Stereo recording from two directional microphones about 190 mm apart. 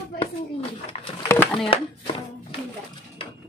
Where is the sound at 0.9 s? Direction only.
35° left (ahead or behind).